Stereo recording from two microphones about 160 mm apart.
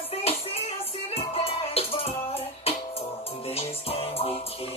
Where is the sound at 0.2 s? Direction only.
40° left (ahead or behind).